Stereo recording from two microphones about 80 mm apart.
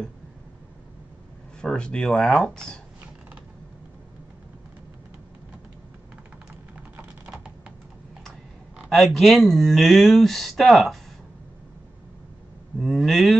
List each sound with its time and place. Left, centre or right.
1.6 s speech: centre
8.7 s speech: centre
12.7 s speech: centre